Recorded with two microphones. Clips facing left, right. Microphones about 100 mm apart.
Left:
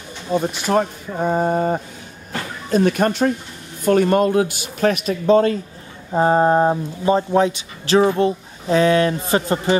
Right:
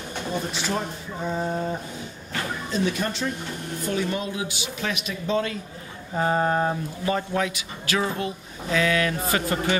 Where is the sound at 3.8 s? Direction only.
55° left (ahead or behind).